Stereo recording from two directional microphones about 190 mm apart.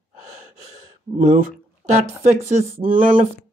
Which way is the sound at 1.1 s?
35° right (ahead or behind).